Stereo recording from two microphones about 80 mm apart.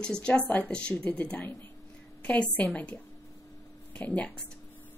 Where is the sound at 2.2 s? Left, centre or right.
Centre.